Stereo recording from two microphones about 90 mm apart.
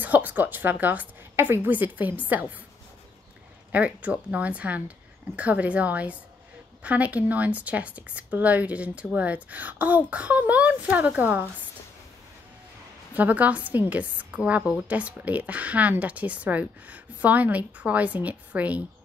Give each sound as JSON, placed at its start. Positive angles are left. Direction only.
{"t": 0.0, "sound": "a woman's voice", "side_deg": -20}
{"t": 3.7, "sound": "a woman's voice", "side_deg": -15}
{"t": 13.1, "sound": "a woman's voice", "side_deg": -15}